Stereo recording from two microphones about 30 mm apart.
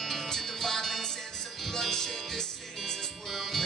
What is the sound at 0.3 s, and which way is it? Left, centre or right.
Music, centre.